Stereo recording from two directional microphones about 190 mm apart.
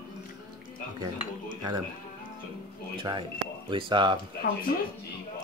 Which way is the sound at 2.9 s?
25° right (ahead or behind).